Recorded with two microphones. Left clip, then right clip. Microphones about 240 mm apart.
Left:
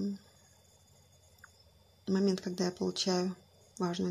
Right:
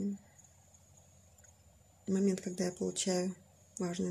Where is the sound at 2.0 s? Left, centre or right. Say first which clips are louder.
Left 2 dB; centre.